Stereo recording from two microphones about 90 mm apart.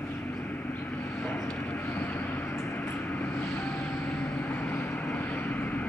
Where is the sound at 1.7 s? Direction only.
20° left (ahead or behind).